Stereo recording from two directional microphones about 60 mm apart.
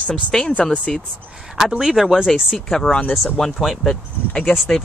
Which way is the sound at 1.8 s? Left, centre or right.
Centre.